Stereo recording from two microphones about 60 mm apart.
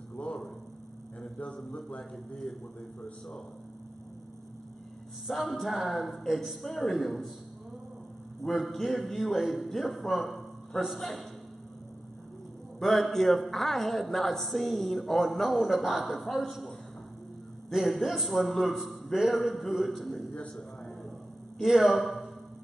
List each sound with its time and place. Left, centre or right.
0.2 s a sound: centre
1.2 s a man's voice: centre
5.2 s a man's voice: centre
8.5 s a man's voice: centre
12.7 s a man's voice: centre
20.5 s a sound: centre
21.5 s a man's voice: centre